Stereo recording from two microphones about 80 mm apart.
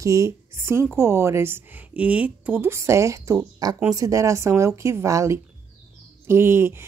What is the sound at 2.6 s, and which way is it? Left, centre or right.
Speech, right.